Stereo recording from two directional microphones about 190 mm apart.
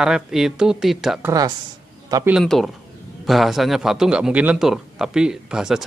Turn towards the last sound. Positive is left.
turn(degrees=-5)  # may be behind; listen again after turning